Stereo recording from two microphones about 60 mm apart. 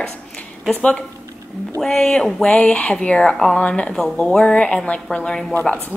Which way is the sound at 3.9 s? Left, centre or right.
Centre.